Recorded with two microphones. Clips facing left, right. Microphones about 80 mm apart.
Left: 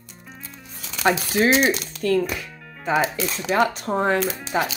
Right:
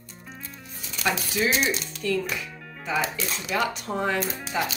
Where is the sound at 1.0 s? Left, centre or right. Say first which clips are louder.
Left 6 dB; left.